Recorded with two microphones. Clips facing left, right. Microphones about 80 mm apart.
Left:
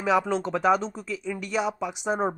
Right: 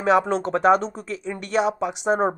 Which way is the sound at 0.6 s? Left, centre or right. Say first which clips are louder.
Right 5 dB; right.